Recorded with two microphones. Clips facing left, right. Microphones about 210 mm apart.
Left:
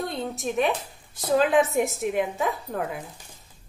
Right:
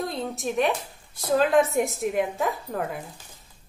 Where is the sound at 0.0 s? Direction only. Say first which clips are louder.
Even; centre (ahead or behind).